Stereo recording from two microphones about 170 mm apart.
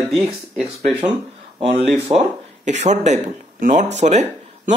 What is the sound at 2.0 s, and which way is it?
Speech, 40° right (ahead or behind).